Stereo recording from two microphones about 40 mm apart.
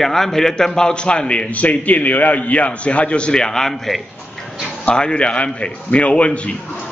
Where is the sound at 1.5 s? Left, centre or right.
Left; by 4.0 s centre.